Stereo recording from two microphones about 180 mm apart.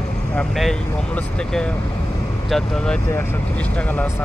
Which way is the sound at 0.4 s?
5° left (ahead or behind).